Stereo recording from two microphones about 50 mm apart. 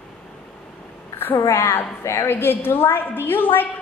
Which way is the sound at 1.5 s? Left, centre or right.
Left.